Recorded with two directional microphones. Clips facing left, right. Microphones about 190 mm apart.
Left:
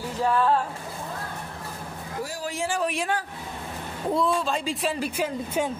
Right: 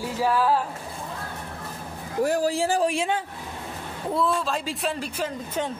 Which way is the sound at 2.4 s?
35° right (ahead or behind).